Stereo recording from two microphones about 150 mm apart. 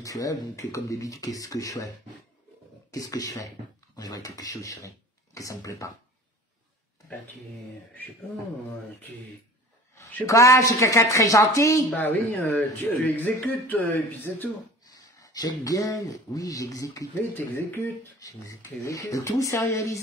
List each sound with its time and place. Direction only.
0.0 s speech: 25° left (ahead or behind)
2.9 s speech: 25° left (ahead or behind)
9.9 s speech: 20° left (ahead or behind)
14.9 s speech: 25° left (ahead or behind)